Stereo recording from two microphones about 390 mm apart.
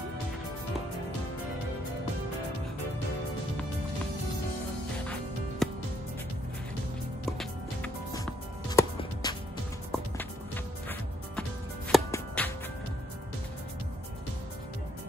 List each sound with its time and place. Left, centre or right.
5.6 s music: centre
7.2 s music: centre